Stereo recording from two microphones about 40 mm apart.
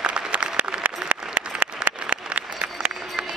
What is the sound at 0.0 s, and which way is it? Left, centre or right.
Applause, right.